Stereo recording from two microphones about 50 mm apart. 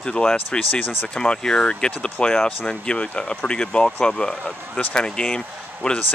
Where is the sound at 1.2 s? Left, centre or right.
Centre.